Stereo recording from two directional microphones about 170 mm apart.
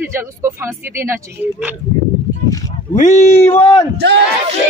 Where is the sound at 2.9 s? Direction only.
45° left (ahead or behind).